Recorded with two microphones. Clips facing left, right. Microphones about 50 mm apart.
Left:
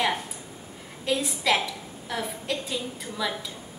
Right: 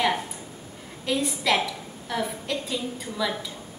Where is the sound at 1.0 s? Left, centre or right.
Centre.